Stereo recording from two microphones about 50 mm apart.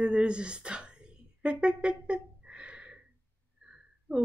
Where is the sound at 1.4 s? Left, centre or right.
Centre.